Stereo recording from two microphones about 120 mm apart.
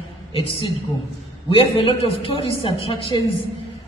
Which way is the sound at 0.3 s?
50° left (ahead or behind).